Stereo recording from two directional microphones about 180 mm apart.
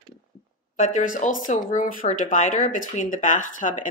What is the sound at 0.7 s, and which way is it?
Speech, 45° left (ahead or behind).